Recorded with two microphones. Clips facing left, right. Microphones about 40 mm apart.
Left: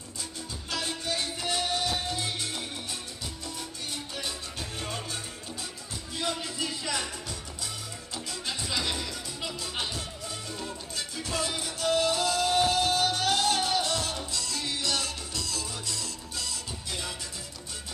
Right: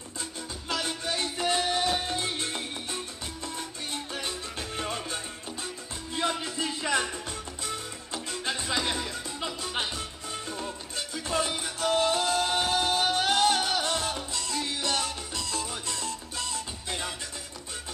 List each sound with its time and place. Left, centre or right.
0.7 s music: right